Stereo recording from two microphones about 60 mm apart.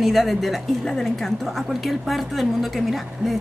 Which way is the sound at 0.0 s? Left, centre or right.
Centre.